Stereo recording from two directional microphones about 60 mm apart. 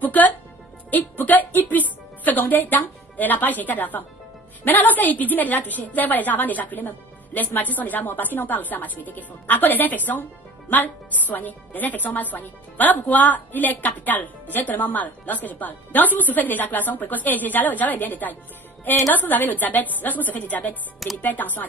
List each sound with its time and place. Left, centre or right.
0.0 s music: left
0.8 s a woman's voice: left
11.2 s a woman's voice: left